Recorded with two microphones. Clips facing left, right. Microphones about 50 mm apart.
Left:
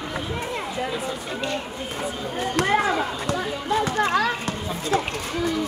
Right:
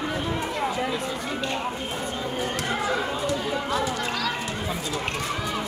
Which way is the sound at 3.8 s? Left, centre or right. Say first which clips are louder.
Left 6 dB; left.